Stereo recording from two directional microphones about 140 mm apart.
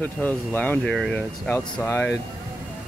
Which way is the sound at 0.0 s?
10° left (ahead or behind).